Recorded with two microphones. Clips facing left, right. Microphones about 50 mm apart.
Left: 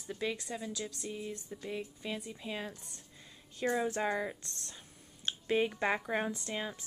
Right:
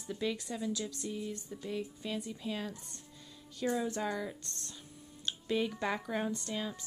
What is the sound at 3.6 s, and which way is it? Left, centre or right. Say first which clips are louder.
A woman's voice: left 2 dB; left.